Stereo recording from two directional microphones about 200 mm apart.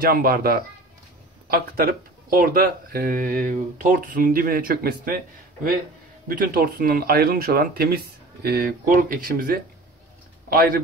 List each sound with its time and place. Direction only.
0.0 s speech: 45° right (ahead or behind)